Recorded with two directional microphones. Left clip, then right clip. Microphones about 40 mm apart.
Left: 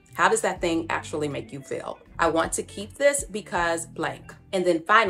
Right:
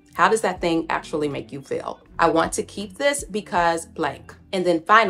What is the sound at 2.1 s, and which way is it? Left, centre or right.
Speech, right.